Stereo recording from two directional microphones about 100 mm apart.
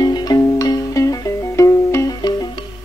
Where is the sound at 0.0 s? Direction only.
40° left (ahead or behind).